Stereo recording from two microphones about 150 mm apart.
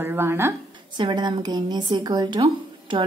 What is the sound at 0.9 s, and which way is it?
A woman's voice, 30° right (ahead or behind).